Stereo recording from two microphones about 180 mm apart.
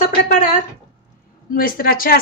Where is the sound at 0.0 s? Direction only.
45° left (ahead or behind).